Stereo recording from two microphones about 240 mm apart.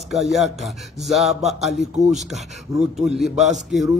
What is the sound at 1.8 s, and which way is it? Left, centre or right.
Speech, right.